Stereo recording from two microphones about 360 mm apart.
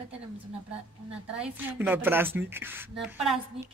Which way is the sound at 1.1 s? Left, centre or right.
Centre.